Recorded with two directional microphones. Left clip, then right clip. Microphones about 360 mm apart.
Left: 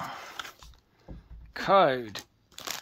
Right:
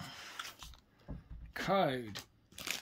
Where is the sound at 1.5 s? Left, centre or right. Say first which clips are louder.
Left 11 dB; centre.